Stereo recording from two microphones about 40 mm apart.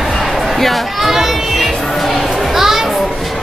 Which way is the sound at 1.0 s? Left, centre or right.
Centre.